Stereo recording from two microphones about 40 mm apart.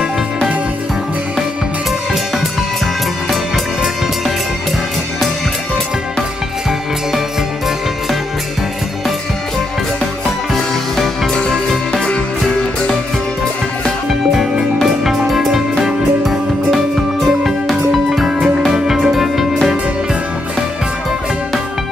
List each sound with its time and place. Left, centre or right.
3.3 s music: centre
11.3 s music: centre
14.3 s music: centre